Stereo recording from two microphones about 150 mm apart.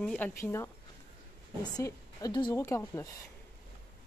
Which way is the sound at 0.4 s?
15° left (ahead or behind).